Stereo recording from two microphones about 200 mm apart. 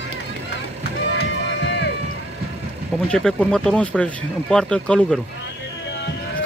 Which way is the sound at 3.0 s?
5° left (ahead or behind).